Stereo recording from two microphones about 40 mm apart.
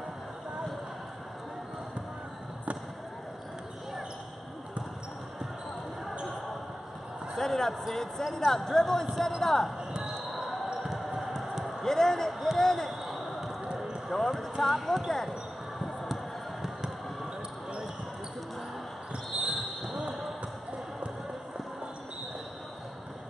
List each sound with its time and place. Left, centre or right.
7.3 s a sound: centre
7.9 s speech: centre
9.8 s music: centre
10.3 s basketball bounce: centre
11.8 s speech: centre
13.0 s basketball bounce: centre
14.0 s speech: centre
16.6 s fireworks: centre
19.3 s basketball bounce: centre